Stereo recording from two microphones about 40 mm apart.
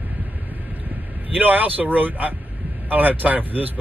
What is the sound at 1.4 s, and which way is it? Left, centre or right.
Speech, right.